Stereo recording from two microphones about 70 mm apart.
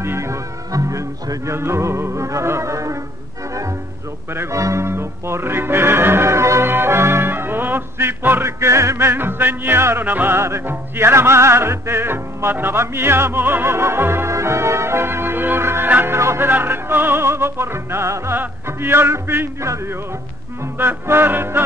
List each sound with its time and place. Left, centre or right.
0.0 s music: right
4.3 s music: right
4.6 s music: right
4.8 s music: right
16.2 s music: right
16.4 s music: right
20.7 s music: right